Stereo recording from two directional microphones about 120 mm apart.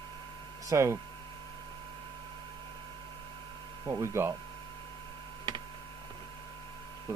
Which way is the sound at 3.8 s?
25° right (ahead or behind).